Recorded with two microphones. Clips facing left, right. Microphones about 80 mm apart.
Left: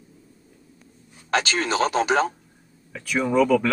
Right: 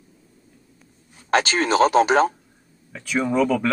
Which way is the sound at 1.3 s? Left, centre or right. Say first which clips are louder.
Right 4 dB; right.